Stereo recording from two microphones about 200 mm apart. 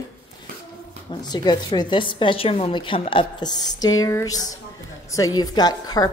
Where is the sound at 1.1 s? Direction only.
20° left (ahead or behind).